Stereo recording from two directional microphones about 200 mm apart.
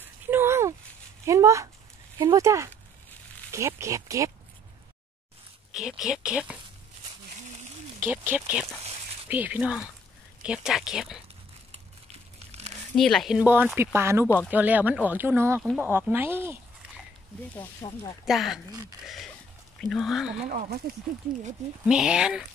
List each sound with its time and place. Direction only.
0.3 s a sound: 10° right (ahead or behind)
1.2 s speech: 15° right (ahead or behind)
3.8 s speech: 15° right (ahead or behind)
5.7 s speech: centre (ahead or behind)
8.0 s speech: 10° right (ahead or behind)
12.4 s crumpling: 30° right (ahead or behind)
12.9 s speech: centre (ahead or behind)
17.8 s speech: 15° left (ahead or behind)
18.2 s speech: centre (ahead or behind)
19.8 s speech: centre (ahead or behind)
21.8 s speech: 5° right (ahead or behind)